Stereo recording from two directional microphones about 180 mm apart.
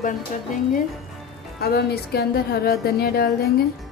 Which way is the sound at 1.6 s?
60° left (ahead or behind).